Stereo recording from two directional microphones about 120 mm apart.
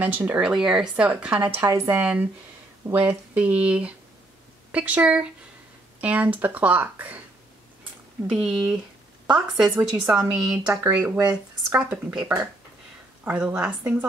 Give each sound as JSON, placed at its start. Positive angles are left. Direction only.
{"t": 0.0, "sound": "a woman's voice", "side_deg": -15}
{"t": 8.3, "sound": "a woman's voice", "side_deg": -5}
{"t": 13.2, "sound": "a woman's voice", "side_deg": -10}